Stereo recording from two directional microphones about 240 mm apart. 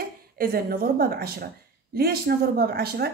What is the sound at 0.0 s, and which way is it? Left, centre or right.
Speech, right.